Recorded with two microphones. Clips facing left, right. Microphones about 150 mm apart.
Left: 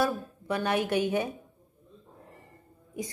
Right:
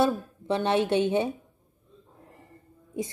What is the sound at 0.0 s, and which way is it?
A woman's voice, 25° right (ahead or behind).